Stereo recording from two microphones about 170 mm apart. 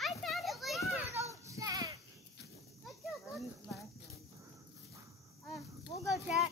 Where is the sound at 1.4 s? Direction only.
20° right (ahead or behind).